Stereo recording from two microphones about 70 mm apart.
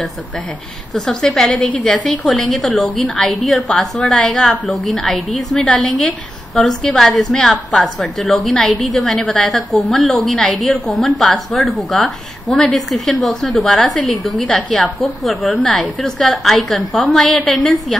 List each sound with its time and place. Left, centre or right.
0.9 s a woman's voice: centre
1.5 s a woman's voice: centre
2.0 s a woman's voice: centre
14.5 s a woman's voice: centre
15.2 s a woman's voice: centre